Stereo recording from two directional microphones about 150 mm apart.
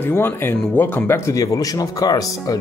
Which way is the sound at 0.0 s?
15° left (ahead or behind).